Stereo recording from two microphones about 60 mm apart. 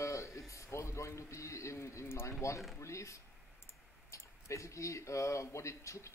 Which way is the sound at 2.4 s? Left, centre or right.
Left.